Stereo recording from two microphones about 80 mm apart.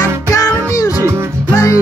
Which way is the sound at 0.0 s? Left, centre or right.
Left.